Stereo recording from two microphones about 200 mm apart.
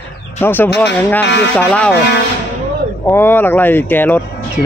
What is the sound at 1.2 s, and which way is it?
Speech, 60° left (ahead or behind).